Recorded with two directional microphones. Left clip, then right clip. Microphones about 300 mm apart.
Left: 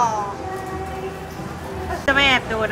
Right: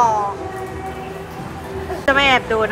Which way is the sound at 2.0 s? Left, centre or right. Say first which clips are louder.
Right 2 dB; centre.